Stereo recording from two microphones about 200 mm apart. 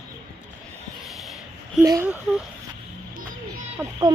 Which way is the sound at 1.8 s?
15° right (ahead or behind).